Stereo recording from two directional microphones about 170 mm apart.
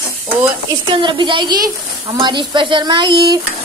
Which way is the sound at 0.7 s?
30° right (ahead or behind).